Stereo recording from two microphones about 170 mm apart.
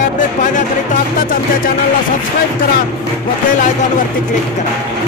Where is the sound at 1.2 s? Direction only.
55° left (ahead or behind).